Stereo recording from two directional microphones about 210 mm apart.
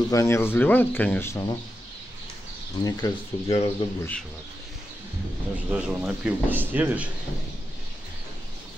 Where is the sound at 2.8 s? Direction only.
20° left (ahead or behind).